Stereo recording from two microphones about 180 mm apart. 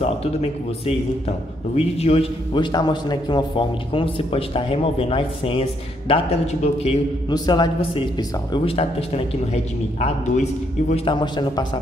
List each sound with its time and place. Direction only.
0.0 s a man's voice: 35° left (ahead or behind)
11.1 s a man's voice: 25° left (ahead or behind)